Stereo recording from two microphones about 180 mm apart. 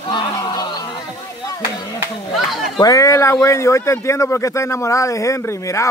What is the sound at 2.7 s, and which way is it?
Speech, 20° left (ahead or behind).